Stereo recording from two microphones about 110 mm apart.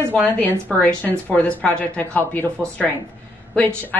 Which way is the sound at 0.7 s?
15° left (ahead or behind).